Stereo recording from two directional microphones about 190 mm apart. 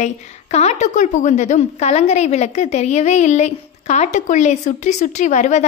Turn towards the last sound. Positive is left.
turn(degrees=40)  # may be behind; listen again after turning